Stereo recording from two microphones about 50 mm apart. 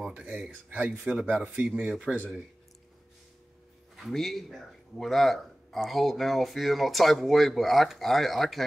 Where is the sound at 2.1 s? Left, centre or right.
Centre.